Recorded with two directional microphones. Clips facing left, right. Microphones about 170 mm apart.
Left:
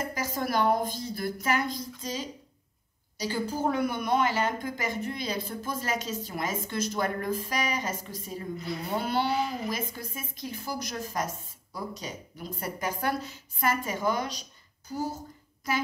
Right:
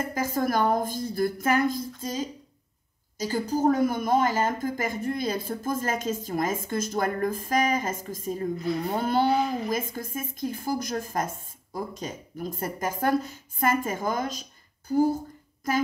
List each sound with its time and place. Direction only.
0.1 s speech: 50° right (ahead or behind)